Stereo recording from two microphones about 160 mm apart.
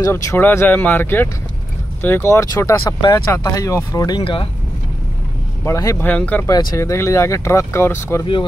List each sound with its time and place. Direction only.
0.0 s speech: 20° left (ahead or behind)
5.7 s speech: 20° left (ahead or behind)
6.4 s speech: 25° left (ahead or behind)